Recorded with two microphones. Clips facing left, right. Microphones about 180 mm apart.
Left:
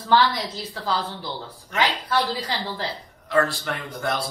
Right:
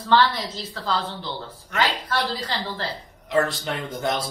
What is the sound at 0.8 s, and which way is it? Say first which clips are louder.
Speech: even; 15° left (ahead or behind).